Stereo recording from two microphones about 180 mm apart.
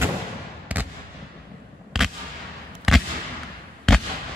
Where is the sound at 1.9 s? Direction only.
5° right (ahead or behind).